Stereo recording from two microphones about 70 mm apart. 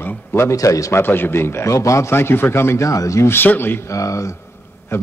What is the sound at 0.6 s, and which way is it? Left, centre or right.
Speech, left.